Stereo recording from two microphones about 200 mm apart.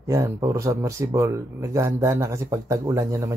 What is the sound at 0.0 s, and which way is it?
Speech, 15° right (ahead or behind).